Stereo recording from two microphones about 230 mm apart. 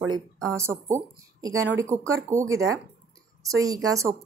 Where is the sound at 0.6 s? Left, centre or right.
Centre.